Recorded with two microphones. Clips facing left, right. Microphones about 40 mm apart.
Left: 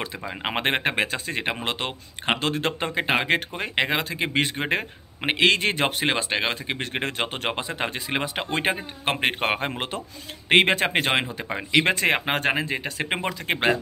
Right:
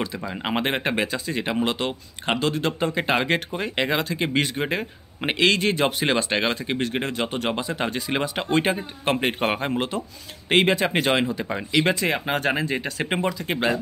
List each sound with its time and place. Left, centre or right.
0.0 s speech: left
2.9 s speech: centre
4.6 s speech: left
5.2 s speech: left
6.4 s speech: centre
6.8 s speech: left; by 8.6 s centre
8.6 s speech: left
11.8 s speech: left
12.4 s speech: left
13.2 s speech: left